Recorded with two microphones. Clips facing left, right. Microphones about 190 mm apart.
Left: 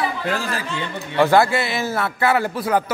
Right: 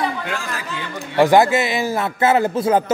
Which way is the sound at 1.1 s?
15° right (ahead or behind).